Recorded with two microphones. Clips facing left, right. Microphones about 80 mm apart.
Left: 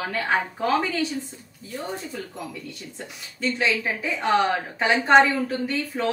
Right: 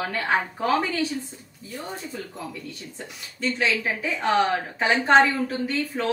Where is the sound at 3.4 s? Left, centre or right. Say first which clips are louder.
Even; centre.